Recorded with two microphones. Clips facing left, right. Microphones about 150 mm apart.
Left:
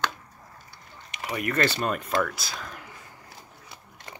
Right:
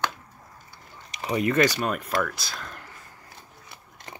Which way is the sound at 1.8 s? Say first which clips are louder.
Even; centre (ahead or behind).